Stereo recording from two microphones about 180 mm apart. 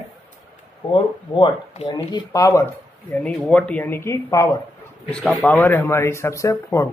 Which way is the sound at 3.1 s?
5° left (ahead or behind).